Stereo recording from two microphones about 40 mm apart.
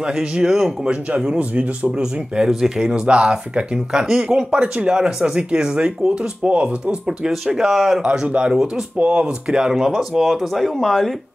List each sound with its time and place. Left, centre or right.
0.0 s speech: right
1.4 s speech: right
1.9 s speech: centre
2.8 s speech: right
6.9 s speech: centre
8.0 s speech: right
8.9 s speech: right
9.2 s speech: right; by 11.1 s centre